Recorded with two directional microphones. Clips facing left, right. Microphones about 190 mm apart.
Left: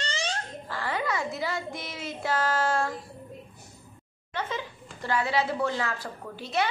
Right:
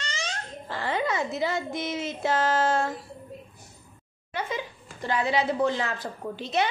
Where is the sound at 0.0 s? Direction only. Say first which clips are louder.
Left 3 dB; 30° left (ahead or behind).